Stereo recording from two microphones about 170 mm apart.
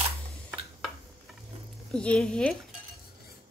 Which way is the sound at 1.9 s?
5° left (ahead or behind).